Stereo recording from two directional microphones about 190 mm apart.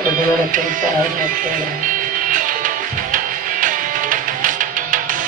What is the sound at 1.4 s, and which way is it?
Music, 45° right (ahead or behind).